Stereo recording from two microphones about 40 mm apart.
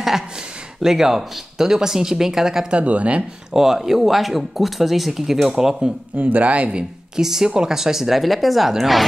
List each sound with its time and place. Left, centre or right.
0.8 s speech: centre
2.7 s speech: right
3.5 s speech: centre
6.1 s speech: right
7.2 s speech: centre
8.2 s speech: centre